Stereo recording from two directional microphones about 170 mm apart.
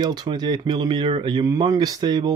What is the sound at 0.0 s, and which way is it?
Speech, 25° right (ahead or behind).